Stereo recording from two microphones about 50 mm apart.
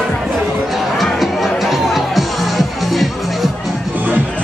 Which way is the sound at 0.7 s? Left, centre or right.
Centre.